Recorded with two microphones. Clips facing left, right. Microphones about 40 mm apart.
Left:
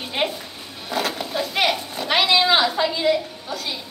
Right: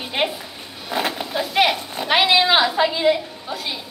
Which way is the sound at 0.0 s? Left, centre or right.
Centre.